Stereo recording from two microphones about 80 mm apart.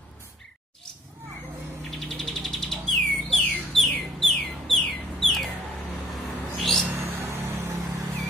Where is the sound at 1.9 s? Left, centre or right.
Centre.